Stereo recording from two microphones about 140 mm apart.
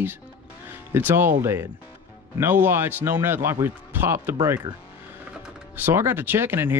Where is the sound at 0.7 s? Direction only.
15° right (ahead or behind).